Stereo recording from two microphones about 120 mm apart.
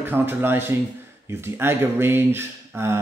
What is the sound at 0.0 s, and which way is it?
Speech, 20° right (ahead or behind).